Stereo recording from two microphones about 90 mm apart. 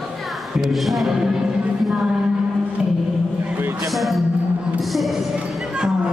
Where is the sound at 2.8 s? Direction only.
10° right (ahead or behind).